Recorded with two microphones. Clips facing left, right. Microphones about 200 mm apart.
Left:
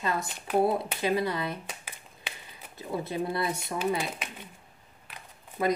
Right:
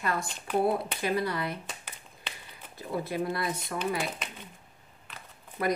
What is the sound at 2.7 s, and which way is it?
Speech, 25° left (ahead or behind).